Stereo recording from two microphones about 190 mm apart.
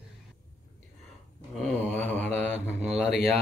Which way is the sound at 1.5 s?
5° left (ahead or behind).